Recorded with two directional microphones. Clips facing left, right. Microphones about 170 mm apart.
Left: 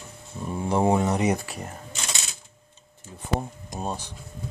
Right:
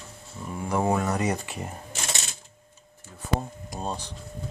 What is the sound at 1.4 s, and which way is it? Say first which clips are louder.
Camera: right 1 dB; 5° right (ahead or behind).